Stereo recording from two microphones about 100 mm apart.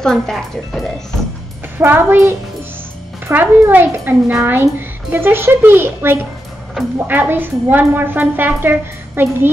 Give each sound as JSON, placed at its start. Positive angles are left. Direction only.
{"t": 0.0, "sound": "speech", "side_deg": 5}
{"t": 1.8, "sound": "a woman's voice", "side_deg": -20}